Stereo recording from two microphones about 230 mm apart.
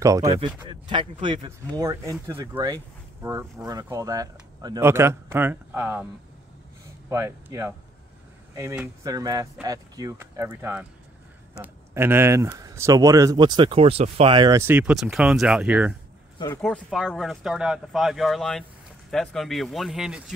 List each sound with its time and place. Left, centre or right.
0.0 s speech: centre
7.1 s speech: centre